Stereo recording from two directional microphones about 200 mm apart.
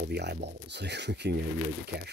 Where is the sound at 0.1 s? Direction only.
55° right (ahead or behind).